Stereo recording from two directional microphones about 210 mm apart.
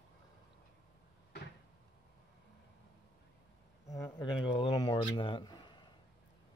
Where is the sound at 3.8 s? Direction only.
15° left (ahead or behind).